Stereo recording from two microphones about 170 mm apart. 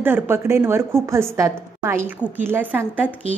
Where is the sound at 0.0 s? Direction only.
15° right (ahead or behind).